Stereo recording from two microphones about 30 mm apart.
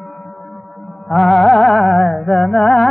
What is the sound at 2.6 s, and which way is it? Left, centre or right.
Carnatic music, centre.